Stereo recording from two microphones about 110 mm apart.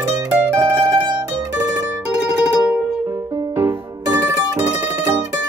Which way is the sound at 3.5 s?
25° right (ahead or behind).